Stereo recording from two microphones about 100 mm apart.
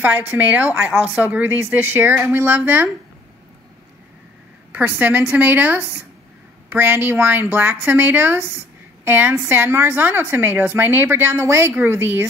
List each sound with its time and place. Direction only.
0.0 s a woman's voice: 20° right (ahead or behind)
4.7 s a woman's voice: 15° right (ahead or behind)